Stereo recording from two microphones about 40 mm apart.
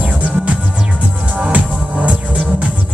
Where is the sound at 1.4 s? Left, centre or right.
Right.